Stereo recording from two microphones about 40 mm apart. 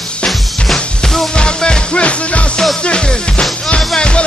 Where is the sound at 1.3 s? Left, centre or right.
Left.